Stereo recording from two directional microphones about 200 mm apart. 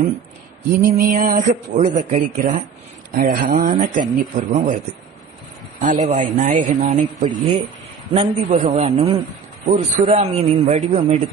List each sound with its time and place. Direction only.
0.7 s speech: 45° right (ahead or behind)
5.8 s a man's voice: 35° right (ahead or behind)